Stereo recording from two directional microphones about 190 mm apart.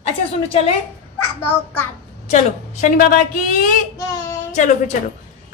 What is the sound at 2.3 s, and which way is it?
A woman's voice, 40° left (ahead or behind).